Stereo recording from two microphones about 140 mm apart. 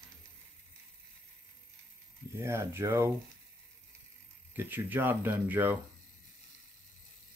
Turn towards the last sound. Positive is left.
turn(degrees=-15)  # may be behind; listen again after turning